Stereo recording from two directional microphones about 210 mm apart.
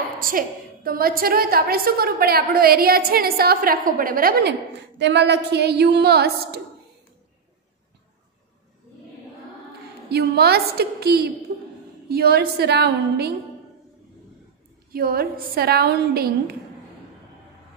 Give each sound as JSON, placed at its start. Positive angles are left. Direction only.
{"t": 0.2, "sound": "a woman's voice", "side_deg": -40}
{"t": 10.0, "sound": "a woman's voice", "side_deg": -50}
{"t": 14.9, "sound": "a woman's voice", "side_deg": -45}